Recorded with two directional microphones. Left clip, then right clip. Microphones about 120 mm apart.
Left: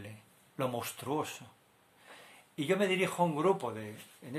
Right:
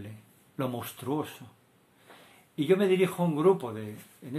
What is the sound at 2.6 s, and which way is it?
Speech, 20° left (ahead or behind).